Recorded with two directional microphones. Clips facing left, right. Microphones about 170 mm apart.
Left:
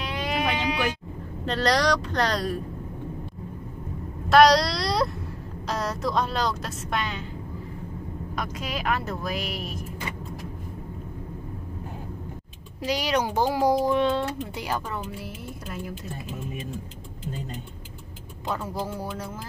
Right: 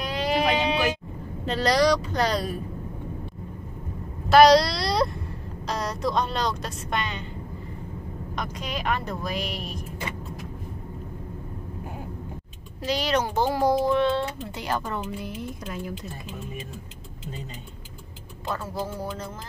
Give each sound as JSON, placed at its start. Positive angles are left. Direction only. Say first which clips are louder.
{"t": 0.0, "sound": "sheep", "louder": "right 3 dB", "side_deg": -35}
{"t": 1.4, "sound": "speech", "louder": "right 2 dB", "side_deg": -5}
{"t": 4.3, "sound": "speech", "louder": "right 2 dB", "side_deg": 0}
{"t": 8.4, "sound": "speech", "louder": "even", "side_deg": 5}
{"t": 12.8, "sound": "a child's voice", "louder": "even", "side_deg": 10}
{"t": 18.5, "sound": "a child's voice", "louder": "left 1 dB", "side_deg": 10}